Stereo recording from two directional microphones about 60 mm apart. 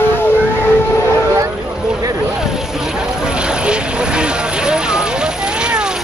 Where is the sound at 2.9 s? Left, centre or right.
Centre.